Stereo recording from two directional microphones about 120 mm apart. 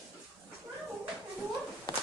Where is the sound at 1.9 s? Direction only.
40° left (ahead or behind).